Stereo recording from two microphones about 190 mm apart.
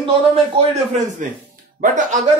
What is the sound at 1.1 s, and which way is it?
Speech, 40° right (ahead or behind).